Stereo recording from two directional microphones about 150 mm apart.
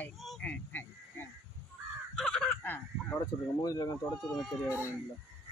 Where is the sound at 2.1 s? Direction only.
5° left (ahead or behind).